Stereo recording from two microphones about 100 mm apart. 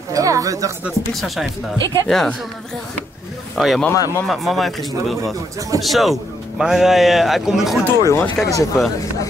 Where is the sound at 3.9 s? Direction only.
35° left (ahead or behind).